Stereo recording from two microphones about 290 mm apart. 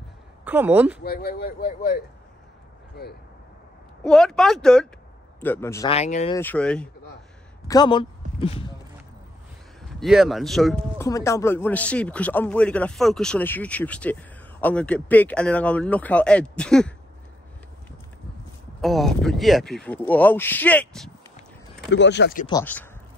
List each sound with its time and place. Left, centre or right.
0.5 s speech: centre
1.0 s speech: left
4.0 s a man's voice: centre
5.9 s speech: left
6.3 s speech: centre
9.9 s speech: centre
18.8 s speech: centre
21.9 s speech: left
22.5 s a man's voice: centre